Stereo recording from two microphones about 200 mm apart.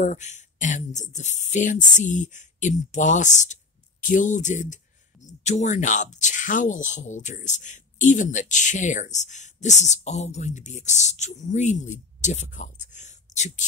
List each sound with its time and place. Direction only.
0.0 s speech: 35° left (ahead or behind)